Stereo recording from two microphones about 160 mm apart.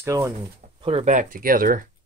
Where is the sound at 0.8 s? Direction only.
35° right (ahead or behind).